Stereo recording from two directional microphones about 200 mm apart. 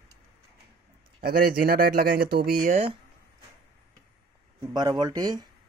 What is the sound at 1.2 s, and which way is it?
Speech, 45° right (ahead or behind).